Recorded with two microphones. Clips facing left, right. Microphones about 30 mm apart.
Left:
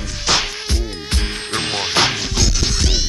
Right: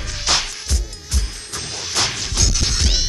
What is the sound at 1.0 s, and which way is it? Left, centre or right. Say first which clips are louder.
Music: left 7 dB; left.